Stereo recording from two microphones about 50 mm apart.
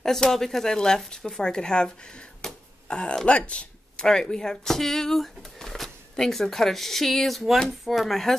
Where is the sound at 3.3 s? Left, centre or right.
Left.